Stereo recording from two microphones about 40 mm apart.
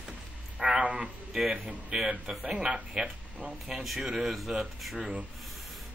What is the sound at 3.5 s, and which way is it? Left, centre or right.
Speech, centre.